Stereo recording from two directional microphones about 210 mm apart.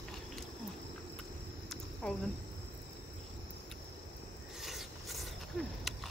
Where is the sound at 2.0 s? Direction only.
5° left (ahead or behind).